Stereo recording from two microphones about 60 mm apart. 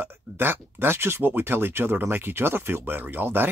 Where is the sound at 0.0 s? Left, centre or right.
Right.